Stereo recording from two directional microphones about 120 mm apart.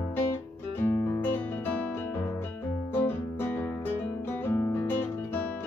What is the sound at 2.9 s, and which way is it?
Guitar, 15° left (ahead or behind).